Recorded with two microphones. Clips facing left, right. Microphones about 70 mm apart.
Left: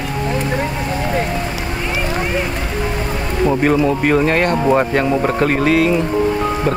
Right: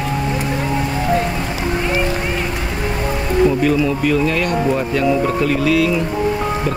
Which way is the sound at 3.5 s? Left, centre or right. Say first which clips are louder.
Left 2 dB; left.